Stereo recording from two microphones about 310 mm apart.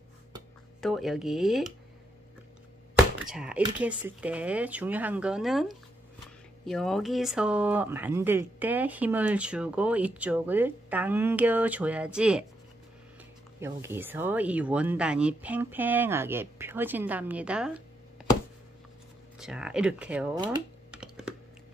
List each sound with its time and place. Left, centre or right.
0.7 s speech: centre
3.2 s speech: centre
13.6 s speech: centre
19.3 s speech: centre
20.5 s computer keyboard: centre